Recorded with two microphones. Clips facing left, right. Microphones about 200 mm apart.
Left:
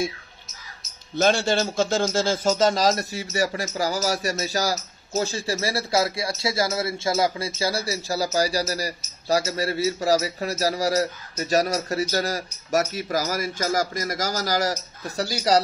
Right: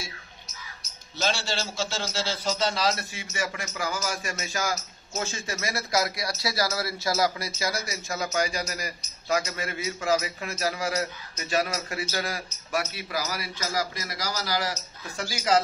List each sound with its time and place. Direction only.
1.1 s a man's voice: 55° left (ahead or behind); by 15.6 s 35° left (ahead or behind)